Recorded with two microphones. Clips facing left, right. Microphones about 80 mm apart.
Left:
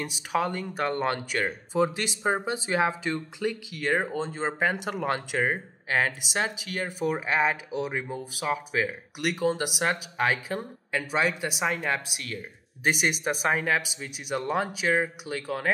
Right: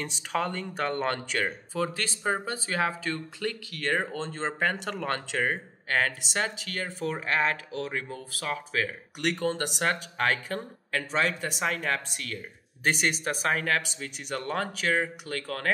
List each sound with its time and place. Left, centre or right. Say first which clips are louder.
0.0 s speech: left 2 dB; centre
1.7 s speech: left 5 dB; centre